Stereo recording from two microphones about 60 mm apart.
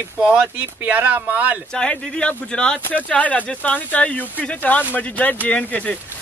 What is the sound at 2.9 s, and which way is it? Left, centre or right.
Speech, left.